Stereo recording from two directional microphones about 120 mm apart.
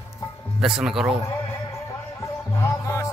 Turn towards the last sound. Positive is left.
turn(degrees=25)  # may be behind; listen again after turning